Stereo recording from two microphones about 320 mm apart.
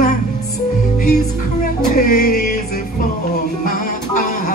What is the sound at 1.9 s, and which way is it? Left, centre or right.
Music, left.